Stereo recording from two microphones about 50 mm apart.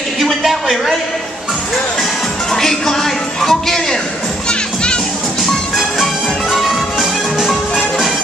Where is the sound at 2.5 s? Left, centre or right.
Centre.